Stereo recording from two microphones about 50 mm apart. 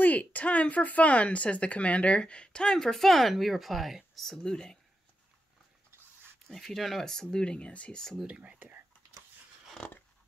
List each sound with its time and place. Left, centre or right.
0.0 s speech: left; by 4.7 s centre
6.4 s speech: centre; by 8.0 s left
8.3 s speech: right
9.8 s a sound: left